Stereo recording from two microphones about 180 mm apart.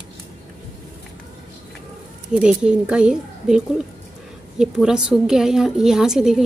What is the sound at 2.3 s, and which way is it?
A woman's voice, 5° right (ahead or behind).